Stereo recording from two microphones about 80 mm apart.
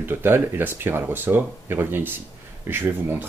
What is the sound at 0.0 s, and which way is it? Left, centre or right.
Speech, right.